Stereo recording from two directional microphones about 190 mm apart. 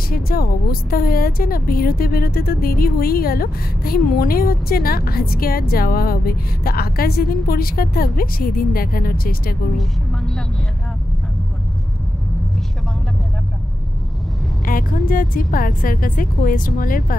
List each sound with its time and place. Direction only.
0.1 s a woman's voice: 50° left (ahead or behind)
14.6 s a woman's voice: 45° left (ahead or behind)